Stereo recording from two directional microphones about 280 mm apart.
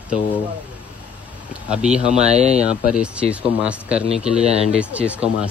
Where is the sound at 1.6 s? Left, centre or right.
Centre.